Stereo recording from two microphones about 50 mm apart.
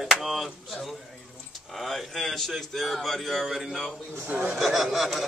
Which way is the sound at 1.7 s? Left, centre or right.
Centre.